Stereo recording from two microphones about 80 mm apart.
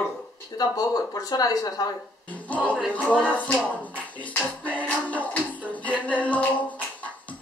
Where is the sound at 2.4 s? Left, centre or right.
Centre.